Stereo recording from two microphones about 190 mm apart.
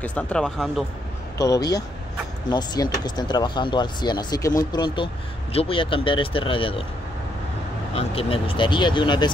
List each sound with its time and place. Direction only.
0.0 s speech: 5° left (ahead or behind)
1.4 s speech: 20° left (ahead or behind)
7.9 s speech: 30° left (ahead or behind)